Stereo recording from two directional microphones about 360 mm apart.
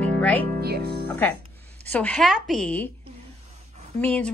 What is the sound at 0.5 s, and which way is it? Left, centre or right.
Speech, right.